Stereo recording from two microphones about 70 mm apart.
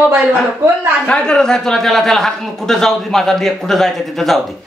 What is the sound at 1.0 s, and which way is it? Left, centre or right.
A woman's voice, centre.